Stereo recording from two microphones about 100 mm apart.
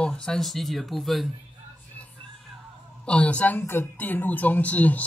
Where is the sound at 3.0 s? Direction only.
15° left (ahead or behind).